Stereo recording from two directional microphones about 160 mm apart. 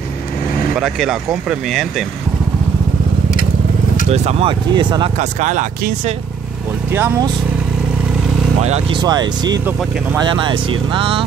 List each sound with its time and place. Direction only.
0.7 s speech: centre (ahead or behind)
4.1 s speech: 40° right (ahead or behind)
5.2 s speech: 50° right (ahead or behind)
6.9 s speech: 15° right (ahead or behind)
8.9 s speech: 25° right (ahead or behind)